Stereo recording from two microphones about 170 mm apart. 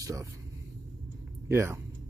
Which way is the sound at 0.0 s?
20° right (ahead or behind).